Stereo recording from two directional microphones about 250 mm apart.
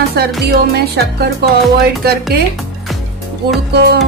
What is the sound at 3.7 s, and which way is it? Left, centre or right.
Music, right.